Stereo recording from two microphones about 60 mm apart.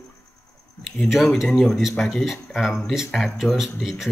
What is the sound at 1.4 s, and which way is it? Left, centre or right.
Speech, centre.